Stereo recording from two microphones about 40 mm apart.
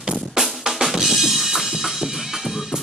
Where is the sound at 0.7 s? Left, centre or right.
Centre.